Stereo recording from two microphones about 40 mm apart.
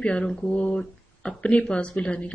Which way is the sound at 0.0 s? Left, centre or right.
Left.